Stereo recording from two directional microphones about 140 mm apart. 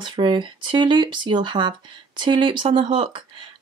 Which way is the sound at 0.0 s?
35° right (ahead or behind).